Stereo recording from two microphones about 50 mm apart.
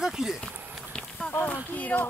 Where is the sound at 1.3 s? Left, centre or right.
Left.